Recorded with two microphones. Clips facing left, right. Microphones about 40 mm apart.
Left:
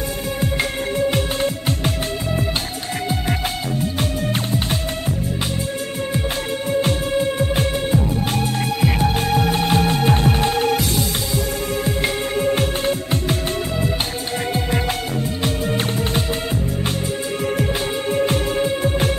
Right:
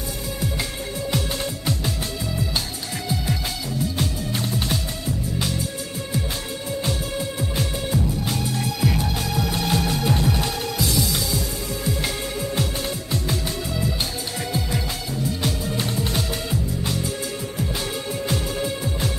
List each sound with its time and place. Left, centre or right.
0.9 s music: left
3.8 s music: left
6.7 s music: left
18.1 s music: left